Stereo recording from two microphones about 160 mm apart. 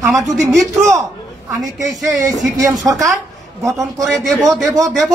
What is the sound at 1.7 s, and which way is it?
Speech, centre (ahead or behind).